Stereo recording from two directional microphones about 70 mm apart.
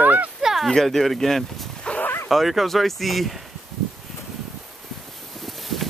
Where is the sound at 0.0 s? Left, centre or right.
Right.